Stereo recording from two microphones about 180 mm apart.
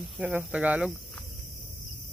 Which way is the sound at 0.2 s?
10° right (ahead or behind).